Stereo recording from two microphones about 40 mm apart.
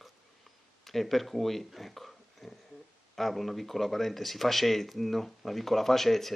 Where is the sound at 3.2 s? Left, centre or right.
Centre.